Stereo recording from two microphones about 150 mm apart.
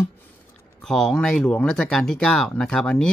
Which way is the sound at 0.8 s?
5° left (ahead or behind).